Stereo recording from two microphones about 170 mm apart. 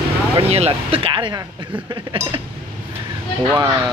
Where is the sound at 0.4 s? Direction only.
35° right (ahead or behind).